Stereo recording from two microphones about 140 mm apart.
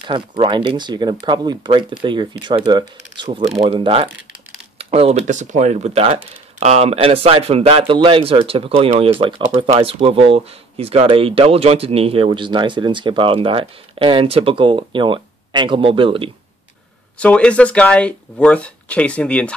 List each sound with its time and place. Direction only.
0.0 s speech: 40° right (ahead or behind)
17.2 s speech: 10° left (ahead or behind)